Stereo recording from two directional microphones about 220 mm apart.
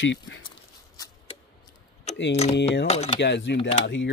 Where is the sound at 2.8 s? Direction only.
30° left (ahead or behind).